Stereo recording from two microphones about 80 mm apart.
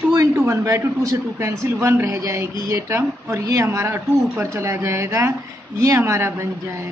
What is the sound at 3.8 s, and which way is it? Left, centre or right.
Speech, right.